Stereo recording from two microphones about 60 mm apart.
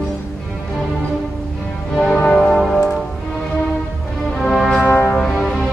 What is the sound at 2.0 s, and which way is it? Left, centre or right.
Music, centre.